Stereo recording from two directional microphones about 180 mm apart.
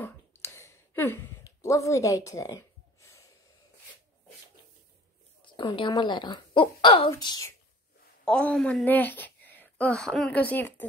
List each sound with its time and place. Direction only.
0.0 s a sound: 15° left (ahead or behind)
5.4 s a woman's voice: 25° left (ahead or behind)
8.3 s speech: 5° left (ahead or behind)